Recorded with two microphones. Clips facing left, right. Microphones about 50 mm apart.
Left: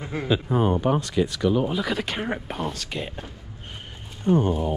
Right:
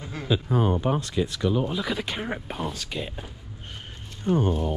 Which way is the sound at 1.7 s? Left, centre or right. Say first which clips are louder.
Left 2 dB; left.